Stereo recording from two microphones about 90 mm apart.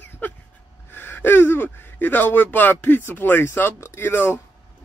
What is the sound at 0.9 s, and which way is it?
Speech, 25° left (ahead or behind).